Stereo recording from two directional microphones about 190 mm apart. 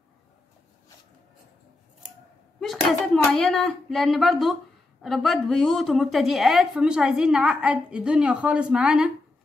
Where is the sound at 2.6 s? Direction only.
Centre (ahead or behind).